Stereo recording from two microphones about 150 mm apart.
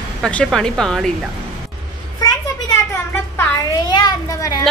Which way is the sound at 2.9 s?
15° left (ahead or behind).